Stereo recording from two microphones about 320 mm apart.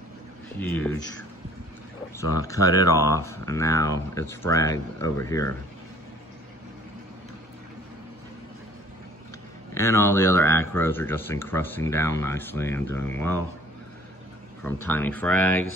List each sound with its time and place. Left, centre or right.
0.6 s speech: centre
2.1 s speech: centre
9.8 s speech: centre
14.9 s speech: centre